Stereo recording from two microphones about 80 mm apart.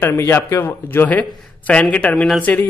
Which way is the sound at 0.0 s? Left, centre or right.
Left.